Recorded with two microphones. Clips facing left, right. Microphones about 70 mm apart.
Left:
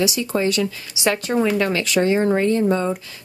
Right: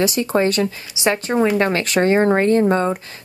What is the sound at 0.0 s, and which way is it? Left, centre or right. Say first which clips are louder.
Speech: right 3 dB; right.